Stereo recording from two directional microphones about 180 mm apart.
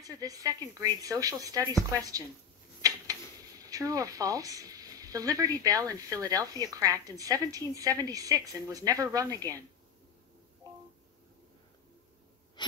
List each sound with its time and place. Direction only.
0.0 s a woman's voice: 20° right (ahead or behind)
2.8 s a woman's voice: 20° right (ahead or behind)
12.6 s a sound: 25° left (ahead or behind)